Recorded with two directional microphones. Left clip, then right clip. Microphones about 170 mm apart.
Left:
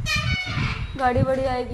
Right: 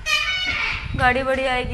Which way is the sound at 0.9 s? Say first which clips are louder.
Right 3 dB; 20° left (ahead or behind).